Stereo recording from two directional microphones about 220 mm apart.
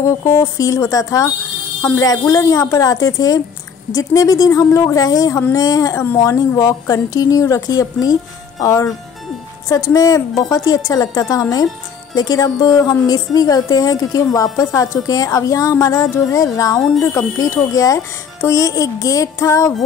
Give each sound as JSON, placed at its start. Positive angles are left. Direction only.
{"t": 0.0, "sound": "speech", "side_deg": 15}